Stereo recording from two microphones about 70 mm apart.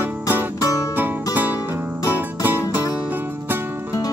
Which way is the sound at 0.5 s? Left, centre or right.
Left.